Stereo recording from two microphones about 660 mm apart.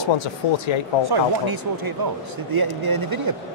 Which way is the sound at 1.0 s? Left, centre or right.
Right.